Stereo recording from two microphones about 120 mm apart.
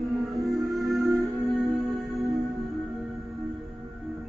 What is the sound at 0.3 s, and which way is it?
Music, centre (ahead or behind).